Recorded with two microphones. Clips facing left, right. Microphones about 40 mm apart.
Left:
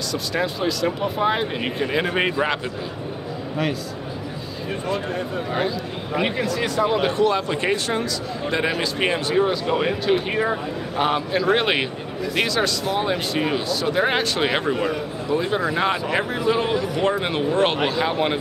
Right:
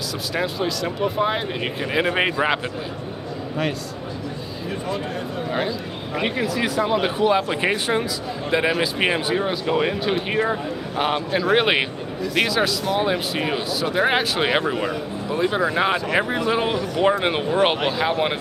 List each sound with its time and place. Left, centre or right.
0.1 s speech: centre
3.6 s speech: centre
4.8 s speech: centre
16.7 s speech: centre
17.2 s speech: centre